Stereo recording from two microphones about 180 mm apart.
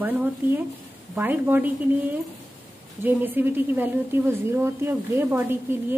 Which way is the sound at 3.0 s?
10° right (ahead or behind).